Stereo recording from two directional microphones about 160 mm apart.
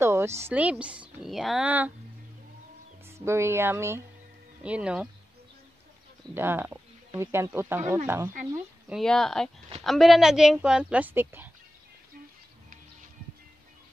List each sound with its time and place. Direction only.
0.0 s a sound: 15° right (ahead or behind)
0.4 s speech: 10° right (ahead or behind)
3.2 s speech: 15° right (ahead or behind)
6.3 s speech: 15° right (ahead or behind)
8.8 s a woman's voice: centre (ahead or behind)